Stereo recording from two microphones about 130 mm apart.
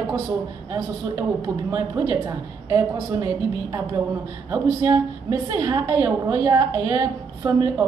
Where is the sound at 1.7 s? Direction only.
25° right (ahead or behind).